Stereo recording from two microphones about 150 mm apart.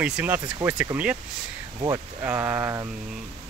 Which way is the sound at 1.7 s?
25° right (ahead or behind).